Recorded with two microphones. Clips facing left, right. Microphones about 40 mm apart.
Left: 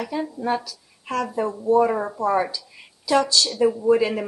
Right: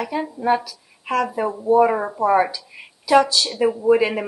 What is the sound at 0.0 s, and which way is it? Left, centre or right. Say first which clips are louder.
Speech: right 3 dB; centre.